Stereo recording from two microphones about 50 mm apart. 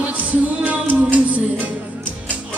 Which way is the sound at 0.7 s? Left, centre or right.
Right.